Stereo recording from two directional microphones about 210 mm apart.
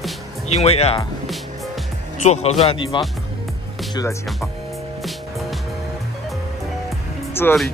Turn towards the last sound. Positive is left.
turn(degrees=10)  # may be behind; listen again after turning